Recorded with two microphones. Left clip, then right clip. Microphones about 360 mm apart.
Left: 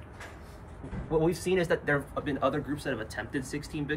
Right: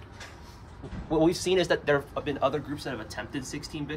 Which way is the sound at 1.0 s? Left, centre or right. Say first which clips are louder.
Right 3 dB; right.